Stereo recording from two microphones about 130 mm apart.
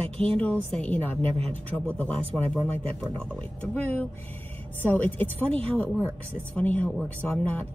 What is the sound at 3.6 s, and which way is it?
Speech, 15° left (ahead or behind).